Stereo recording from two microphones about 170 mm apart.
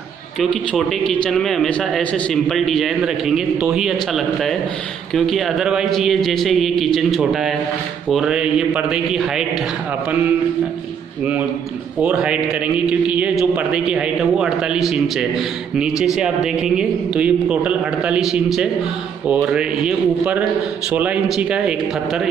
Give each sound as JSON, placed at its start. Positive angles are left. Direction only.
{"t": 0.4, "sound": "a man's voice", "side_deg": 0}
{"t": 12.0, "sound": "a man's voice", "side_deg": -5}